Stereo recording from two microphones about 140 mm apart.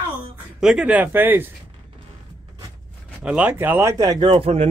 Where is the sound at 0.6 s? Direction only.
5° right (ahead or behind).